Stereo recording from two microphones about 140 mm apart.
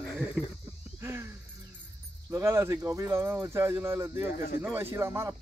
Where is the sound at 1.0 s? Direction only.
20° right (ahead or behind).